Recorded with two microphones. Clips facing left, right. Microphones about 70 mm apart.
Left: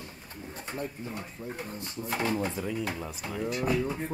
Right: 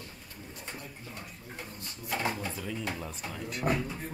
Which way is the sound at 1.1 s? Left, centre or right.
Centre.